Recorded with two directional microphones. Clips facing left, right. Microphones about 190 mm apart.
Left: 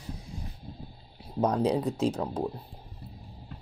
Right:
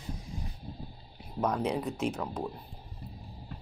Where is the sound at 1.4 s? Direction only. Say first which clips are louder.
Left 4 dB; 35° left (ahead or behind).